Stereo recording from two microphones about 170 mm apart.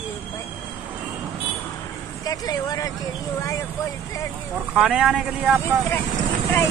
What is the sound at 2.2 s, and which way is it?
Speech, 20° left (ahead or behind).